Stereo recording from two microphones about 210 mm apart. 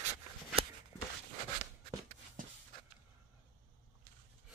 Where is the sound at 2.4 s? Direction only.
40° right (ahead or behind).